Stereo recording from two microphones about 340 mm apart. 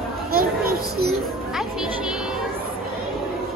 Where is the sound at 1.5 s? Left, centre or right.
Centre.